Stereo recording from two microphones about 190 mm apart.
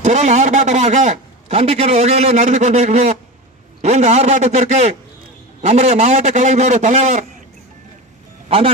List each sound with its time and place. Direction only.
0.0 s a man's voice: 35° right (ahead or behind)
8.5 s a man's voice: 30° right (ahead or behind)